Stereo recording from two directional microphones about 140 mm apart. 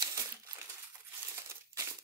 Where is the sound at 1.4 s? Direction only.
20° right (ahead or behind).